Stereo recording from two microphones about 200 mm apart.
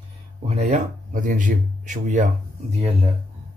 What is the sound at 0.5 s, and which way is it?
Speech, 35° right (ahead or behind).